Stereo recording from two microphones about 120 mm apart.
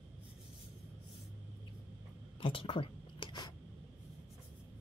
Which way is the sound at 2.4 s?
45° left (ahead or behind).